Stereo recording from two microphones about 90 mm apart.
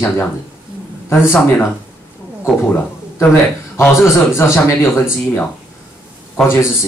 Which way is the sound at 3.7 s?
30° left (ahead or behind).